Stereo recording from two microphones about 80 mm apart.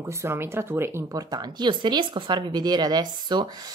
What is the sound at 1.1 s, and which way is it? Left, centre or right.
Speech, right.